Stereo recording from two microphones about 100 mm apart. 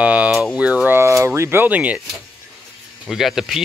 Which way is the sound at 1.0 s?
25° right (ahead or behind).